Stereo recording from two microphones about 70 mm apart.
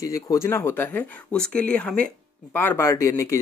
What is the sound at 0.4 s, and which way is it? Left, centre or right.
Speech, left.